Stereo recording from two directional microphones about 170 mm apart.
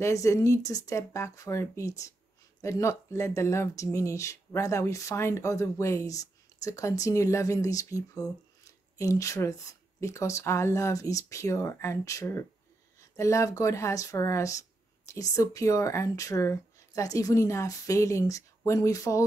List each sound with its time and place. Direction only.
0.0 s speech: 20° left (ahead or behind)